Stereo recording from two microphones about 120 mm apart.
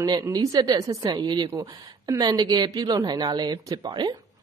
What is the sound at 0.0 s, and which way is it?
A woman's voice, 30° right (ahead or behind).